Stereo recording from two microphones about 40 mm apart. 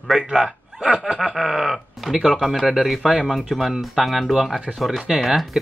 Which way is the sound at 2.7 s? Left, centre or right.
Centre.